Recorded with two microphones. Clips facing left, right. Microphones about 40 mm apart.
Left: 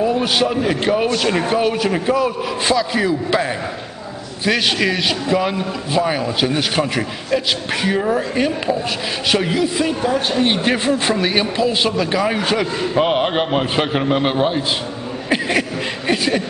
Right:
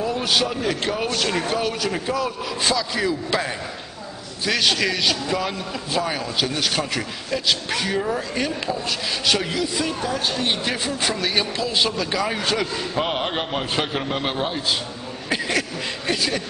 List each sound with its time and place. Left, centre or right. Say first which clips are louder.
0.0 s a man's voice: left 5 dB; centre
4.5 s a man's voice: left 4 dB; centre
15.2 s a sound: left 5 dB; centre
16.1 s a man's voice: left 6 dB; left